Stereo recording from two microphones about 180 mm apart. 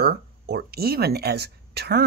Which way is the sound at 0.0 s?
60° right (ahead or behind).